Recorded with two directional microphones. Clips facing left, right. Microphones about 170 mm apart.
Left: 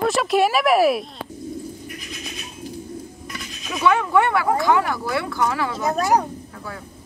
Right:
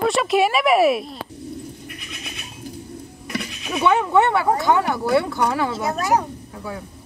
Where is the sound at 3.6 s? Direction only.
25° right (ahead or behind).